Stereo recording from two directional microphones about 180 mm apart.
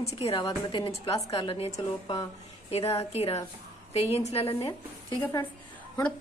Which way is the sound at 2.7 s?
35° left (ahead or behind).